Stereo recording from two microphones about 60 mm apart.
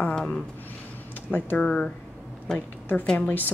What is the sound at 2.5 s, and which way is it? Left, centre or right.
Speech, left.